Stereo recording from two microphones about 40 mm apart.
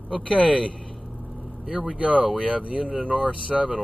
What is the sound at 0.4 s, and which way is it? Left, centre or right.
Speech, right.